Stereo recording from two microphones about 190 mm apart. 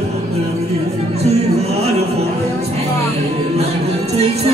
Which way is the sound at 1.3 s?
35° right (ahead or behind).